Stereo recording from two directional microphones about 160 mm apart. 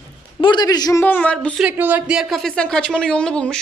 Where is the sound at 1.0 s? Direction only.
10° left (ahead or behind).